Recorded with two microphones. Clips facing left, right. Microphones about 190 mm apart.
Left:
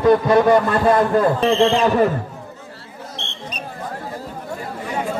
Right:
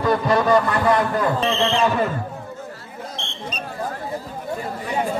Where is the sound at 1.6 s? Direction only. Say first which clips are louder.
Left 5 dB; 45° left (ahead or behind).